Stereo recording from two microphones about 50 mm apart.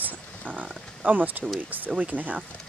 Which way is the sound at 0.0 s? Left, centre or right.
Right.